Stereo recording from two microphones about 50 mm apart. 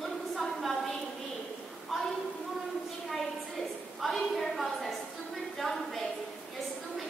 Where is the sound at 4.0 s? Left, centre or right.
Centre.